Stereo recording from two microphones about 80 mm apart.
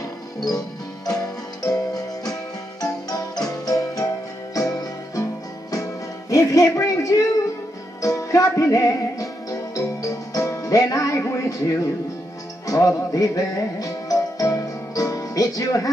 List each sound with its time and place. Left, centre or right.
1.0 s music: left
6.3 s a sound: left
8.0 s music: left